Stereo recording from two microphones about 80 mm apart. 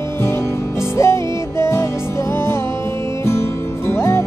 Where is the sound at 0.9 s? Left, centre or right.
Left.